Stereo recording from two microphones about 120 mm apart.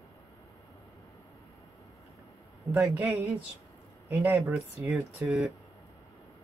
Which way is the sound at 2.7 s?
10° right (ahead or behind).